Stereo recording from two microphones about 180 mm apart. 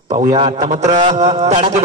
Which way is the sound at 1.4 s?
40° right (ahead or behind).